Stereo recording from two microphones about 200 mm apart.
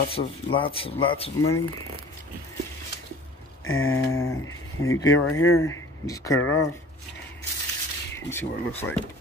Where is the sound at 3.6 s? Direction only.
90° left.